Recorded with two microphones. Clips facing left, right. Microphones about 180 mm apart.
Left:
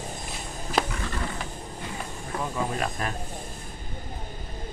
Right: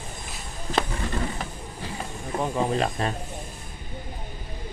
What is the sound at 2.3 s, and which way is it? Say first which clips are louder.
Speech: right 5 dB; 30° right (ahead or behind).